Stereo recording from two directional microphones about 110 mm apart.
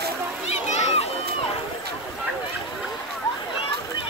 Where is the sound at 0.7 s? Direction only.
80° left.